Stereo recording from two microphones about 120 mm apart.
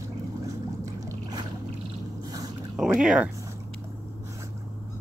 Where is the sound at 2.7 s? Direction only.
5° right (ahead or behind).